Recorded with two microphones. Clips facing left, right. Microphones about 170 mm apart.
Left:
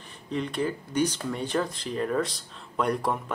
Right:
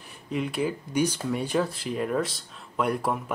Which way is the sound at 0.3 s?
5° right (ahead or behind).